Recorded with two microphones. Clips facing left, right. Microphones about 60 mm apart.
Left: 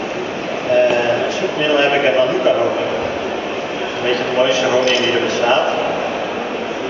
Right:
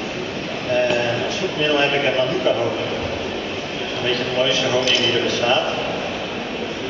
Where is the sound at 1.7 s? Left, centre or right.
Centre.